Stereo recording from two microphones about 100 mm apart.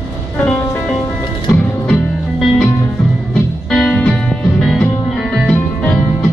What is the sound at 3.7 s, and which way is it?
Music, 10° left (ahead or behind).